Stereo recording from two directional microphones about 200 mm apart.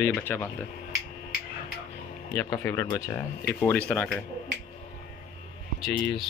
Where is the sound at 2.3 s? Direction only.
15° left (ahead or behind).